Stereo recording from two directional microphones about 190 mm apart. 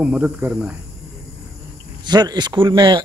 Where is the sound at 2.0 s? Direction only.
20° right (ahead or behind).